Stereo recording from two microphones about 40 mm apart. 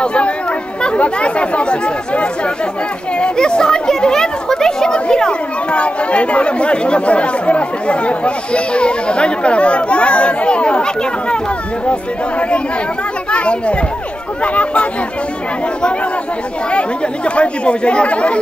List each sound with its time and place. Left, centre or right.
0.0 s chatter: left
0.9 s speech: left
3.2 s a sound: left
5.7 s speech: left
16.7 s speech: left